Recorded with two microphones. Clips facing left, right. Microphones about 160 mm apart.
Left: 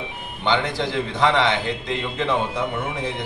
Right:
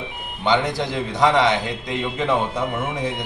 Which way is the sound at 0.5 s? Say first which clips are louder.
Right 2 dB; 15° right (ahead or behind).